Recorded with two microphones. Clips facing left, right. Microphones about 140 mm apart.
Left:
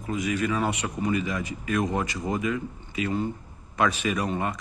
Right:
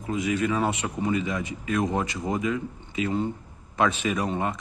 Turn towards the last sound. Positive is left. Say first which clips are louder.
# right 1 dB
turn(degrees=-25)  # may be behind; listen again after turning